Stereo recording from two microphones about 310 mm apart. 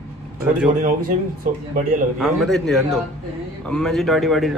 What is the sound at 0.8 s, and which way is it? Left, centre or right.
Speech, right.